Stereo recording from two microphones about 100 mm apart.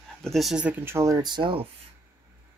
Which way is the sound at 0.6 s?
25° right (ahead or behind).